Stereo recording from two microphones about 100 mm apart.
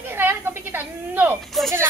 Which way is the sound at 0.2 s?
20° right (ahead or behind).